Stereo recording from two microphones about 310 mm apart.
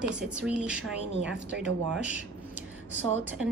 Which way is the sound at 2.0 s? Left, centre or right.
Centre.